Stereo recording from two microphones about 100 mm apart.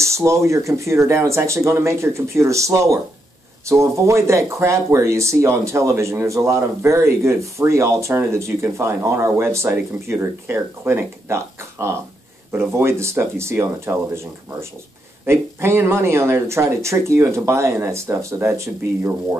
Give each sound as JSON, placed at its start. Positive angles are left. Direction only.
{"t": 0.0, "sound": "speech", "side_deg": -30}